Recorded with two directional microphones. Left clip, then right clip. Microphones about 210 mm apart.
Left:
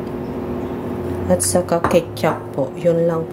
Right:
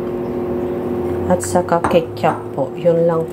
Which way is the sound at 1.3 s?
10° left (ahead or behind).